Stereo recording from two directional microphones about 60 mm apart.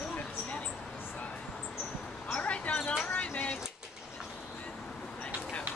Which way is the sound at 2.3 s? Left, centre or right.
Left.